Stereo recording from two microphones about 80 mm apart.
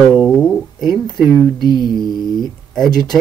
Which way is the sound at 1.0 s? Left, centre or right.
Left.